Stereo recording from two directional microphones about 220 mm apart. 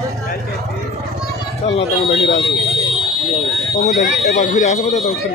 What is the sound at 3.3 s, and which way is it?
Speech, 30° left (ahead or behind).